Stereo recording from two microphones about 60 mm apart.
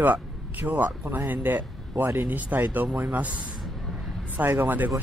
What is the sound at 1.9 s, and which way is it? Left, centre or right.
Speech, right.